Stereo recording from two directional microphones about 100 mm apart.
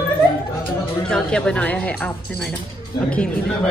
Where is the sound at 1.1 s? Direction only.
10° left (ahead or behind).